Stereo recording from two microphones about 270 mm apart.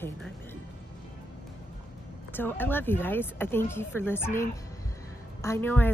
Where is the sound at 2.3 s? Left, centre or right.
Centre.